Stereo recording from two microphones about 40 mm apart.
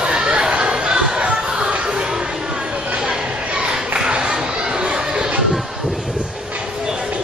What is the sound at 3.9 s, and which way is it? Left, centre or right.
Chatter, right.